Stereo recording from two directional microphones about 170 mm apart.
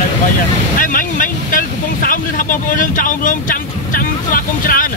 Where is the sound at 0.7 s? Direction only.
55° left (ahead or behind).